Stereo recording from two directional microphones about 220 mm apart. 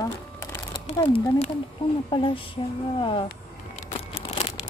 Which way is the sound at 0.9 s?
25° left (ahead or behind).